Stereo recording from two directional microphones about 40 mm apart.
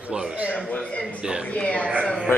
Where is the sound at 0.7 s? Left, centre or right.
Left.